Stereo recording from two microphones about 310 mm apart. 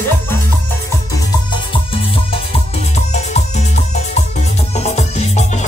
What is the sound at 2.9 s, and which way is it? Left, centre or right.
Music, left.